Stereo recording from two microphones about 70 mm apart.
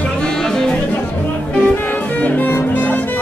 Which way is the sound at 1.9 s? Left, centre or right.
Left.